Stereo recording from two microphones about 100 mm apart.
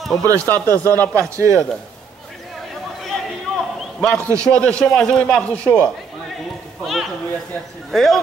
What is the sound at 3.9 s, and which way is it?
A man's voice, 10° left (ahead or behind).